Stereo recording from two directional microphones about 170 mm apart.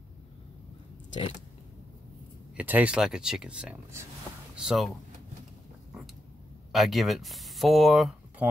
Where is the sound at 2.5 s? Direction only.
10° right (ahead or behind).